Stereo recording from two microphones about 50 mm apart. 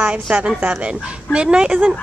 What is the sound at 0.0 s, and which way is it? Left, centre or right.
A woman's voice, right.